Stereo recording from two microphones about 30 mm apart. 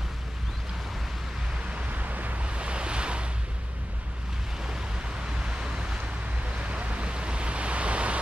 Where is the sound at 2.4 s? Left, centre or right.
Right.